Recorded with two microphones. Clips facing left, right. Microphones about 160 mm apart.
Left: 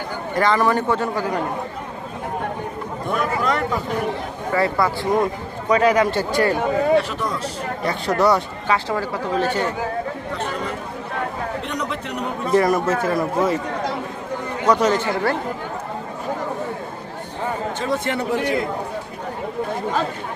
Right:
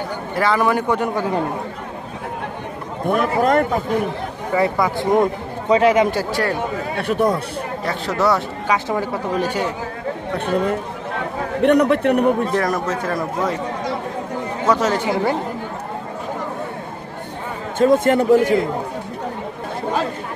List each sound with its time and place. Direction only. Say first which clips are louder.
0.3 s speech: even; 5° right (ahead or behind)
3.1 s a man's voice: right 5 dB; 50° right (ahead or behind)
4.6 s a man's voice: right 2 dB; 20° right (ahead or behind)
6.1 s speech: left 2 dB; centre (ahead or behind)
7.0 s speech: right 4 dB; 55° right (ahead or behind)
7.8 s speech: left 2 dB; centre (ahead or behind)
8.6 s speech: right 2 dB; 15° right (ahead or behind)
10.3 s a man's voice: right 9 dB; 55° right (ahead or behind)
11.6 s speech: right 13 dB; 60° right (ahead or behind)
12.5 s speech: left 3 dB; 5° left (ahead or behind)
14.7 s speech: even; 5° right (ahead or behind)
17.7 s a man's voice: right 13 dB; 50° right (ahead or behind)